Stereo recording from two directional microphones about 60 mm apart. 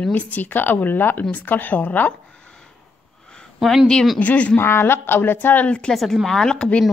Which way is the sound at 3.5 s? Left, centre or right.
Centre.